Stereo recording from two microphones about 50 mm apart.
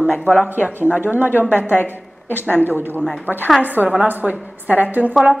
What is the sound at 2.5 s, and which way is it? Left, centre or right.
A woman's voice, right.